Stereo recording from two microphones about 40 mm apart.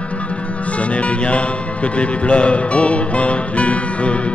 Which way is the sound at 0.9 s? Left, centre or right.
Left.